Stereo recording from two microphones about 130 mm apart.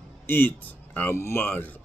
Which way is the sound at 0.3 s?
15° left (ahead or behind).